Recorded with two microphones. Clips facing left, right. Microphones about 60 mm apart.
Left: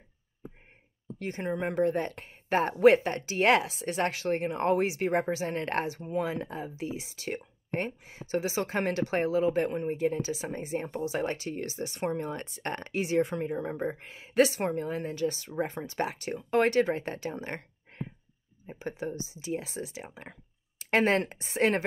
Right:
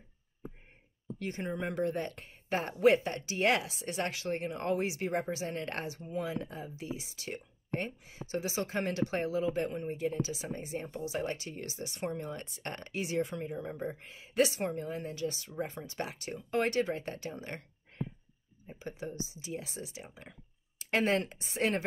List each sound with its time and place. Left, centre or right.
1.3 s a woman's voice: left